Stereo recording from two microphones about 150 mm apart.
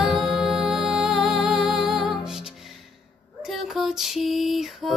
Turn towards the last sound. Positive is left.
turn(degrees=0)  # may be behind; listen again after turning